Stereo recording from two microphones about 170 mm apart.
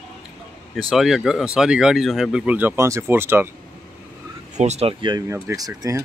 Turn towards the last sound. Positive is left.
turn(degrees=-20)  # may be behind; listen again after turning